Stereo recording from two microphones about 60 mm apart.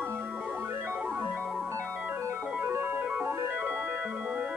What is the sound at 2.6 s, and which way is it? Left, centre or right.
Organ, right.